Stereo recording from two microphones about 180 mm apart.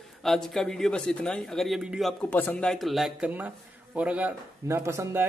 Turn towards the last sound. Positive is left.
turn(degrees=-15)  # may be behind; listen again after turning